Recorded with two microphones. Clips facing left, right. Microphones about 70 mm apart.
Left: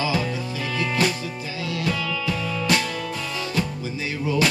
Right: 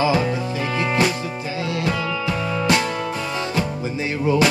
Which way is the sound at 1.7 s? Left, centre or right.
Right.